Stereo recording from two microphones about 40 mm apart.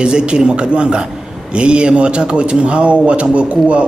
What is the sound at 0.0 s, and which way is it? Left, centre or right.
Speech, right.